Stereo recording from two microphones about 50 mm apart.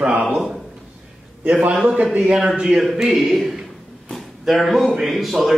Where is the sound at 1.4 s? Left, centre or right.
Right.